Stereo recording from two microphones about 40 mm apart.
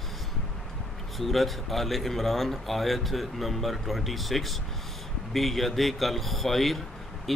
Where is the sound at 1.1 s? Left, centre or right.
Centre.